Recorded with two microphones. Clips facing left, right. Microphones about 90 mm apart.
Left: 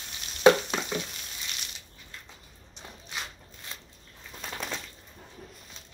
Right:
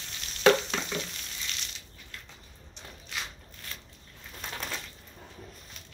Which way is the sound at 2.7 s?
20° left (ahead or behind).